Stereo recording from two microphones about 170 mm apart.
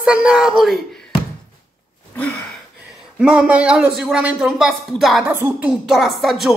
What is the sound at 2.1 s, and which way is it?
Gasp, 10° left (ahead or behind).